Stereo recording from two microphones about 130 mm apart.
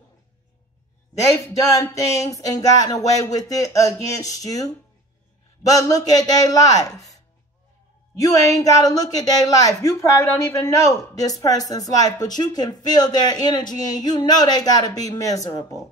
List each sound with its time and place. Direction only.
1.2 s a woman's voice: 25° left (ahead or behind)
8.3 s a woman's voice: 25° left (ahead or behind)